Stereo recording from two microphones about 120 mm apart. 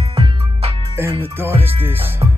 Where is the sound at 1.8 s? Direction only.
15° right (ahead or behind).